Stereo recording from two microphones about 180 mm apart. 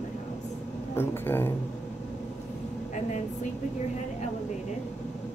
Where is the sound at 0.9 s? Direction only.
10° left (ahead or behind).